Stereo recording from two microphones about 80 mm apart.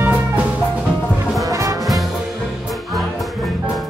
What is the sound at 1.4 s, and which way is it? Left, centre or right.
Brass instrument, right.